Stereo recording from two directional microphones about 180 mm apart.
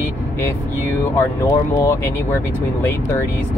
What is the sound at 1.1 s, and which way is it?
Speech, 15° left (ahead or behind).